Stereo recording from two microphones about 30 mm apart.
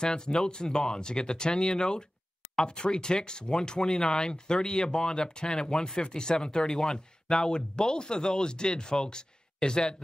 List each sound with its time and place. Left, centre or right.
0.0 s speech: left
3.8 s speech: centre
4.2 s speech: left